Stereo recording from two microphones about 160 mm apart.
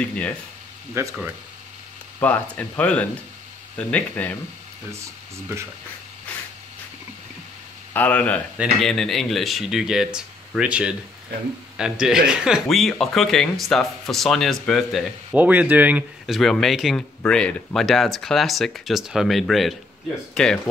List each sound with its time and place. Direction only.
0.0 s speech: 5° left (ahead or behind)
1.0 s speech: 15° right (ahead or behind)
2.1 s speech: 10° left (ahead or behind)
7.9 s speech: 10° left (ahead or behind); by 16.3 s 10° right (ahead or behind)
16.3 s speech: centre (ahead or behind)